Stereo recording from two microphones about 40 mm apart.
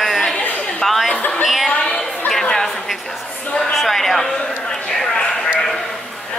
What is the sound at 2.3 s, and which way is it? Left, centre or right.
Chatter, centre.